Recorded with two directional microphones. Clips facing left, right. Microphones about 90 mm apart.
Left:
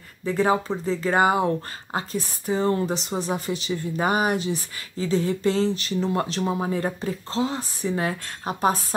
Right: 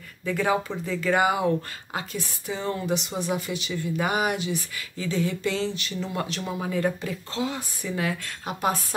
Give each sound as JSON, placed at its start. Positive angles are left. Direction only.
{"t": 0.2, "sound": "speech", "side_deg": 30}